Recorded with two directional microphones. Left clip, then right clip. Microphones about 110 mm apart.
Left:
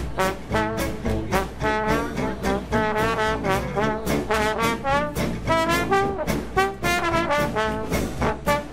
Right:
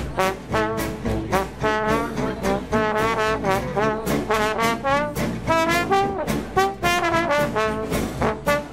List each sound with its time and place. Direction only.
0.2 s music: 60° right (ahead or behind)
1.3 s trombone: 60° right (ahead or behind)
2.7 s brass instrument: 60° right (ahead or behind)
4.3 s trombone: 65° right (ahead or behind)
5.5 s brass instrument: 60° right (ahead or behind)
8.2 s music: 60° right (ahead or behind)